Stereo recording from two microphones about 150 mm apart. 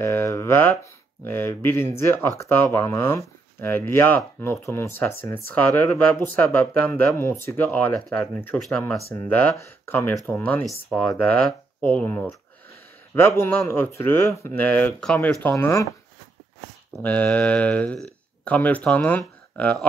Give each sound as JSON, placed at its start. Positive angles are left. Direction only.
{"t": 0.0, "sound": "a sound", "side_deg": 15}
{"t": 1.2, "sound": "speech", "side_deg": 15}
{"t": 13.4, "sound": "speech", "side_deg": 15}
{"t": 17.0, "sound": "speech", "side_deg": 10}